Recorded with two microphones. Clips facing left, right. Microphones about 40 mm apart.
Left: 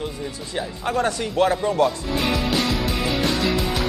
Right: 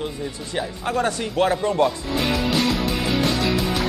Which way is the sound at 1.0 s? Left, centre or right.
Right.